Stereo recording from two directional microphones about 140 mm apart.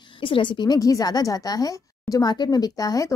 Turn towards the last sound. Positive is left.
turn(degrees=25)  # may be behind; listen again after turning